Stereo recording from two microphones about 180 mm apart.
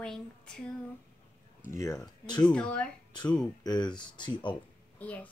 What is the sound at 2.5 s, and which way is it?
Speech, 5° left (ahead or behind).